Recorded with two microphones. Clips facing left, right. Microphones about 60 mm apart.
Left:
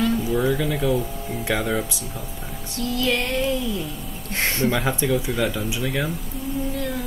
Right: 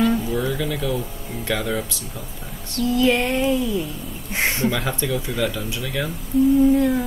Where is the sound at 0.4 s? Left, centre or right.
Centre.